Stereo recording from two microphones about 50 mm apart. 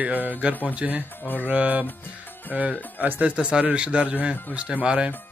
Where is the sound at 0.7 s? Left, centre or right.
Right.